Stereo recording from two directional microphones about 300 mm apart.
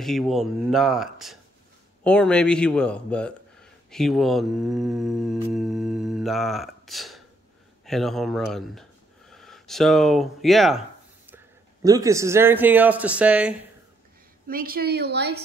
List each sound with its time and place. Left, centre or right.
0.0 s a man's voice: centre
14.5 s a woman's voice: right